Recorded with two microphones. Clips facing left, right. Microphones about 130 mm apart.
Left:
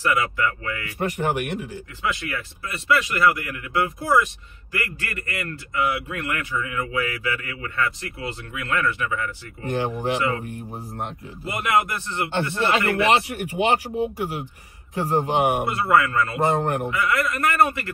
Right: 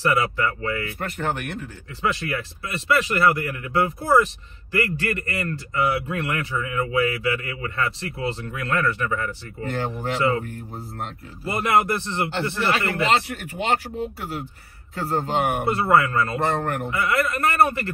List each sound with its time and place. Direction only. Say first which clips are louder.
0.0 s a man's voice: right 1 dB; 35° right (ahead or behind)
0.9 s speech: left 3 dB; 15° left (ahead or behind)
2.0 s a man's voice: right 3 dB; 35° right (ahead or behind)
9.6 s speech: left 2 dB; 15° left (ahead or behind)
11.4 s a man's voice: right 2 dB; 35° right (ahead or behind)
13.1 s speech: left 2 dB; 15° left (ahead or behind)
15.7 s a man's voice: right 1 dB; 30° right (ahead or behind)
16.4 s speech: left 2 dB; 20° left (ahead or behind)
17.1 s a man's voice: right 3 dB; 35° right (ahead or behind)